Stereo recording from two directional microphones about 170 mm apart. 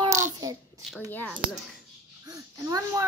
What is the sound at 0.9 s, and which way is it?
Speech, 5° left (ahead or behind).